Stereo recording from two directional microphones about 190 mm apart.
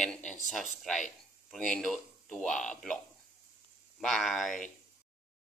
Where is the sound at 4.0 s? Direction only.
Centre (ahead or behind).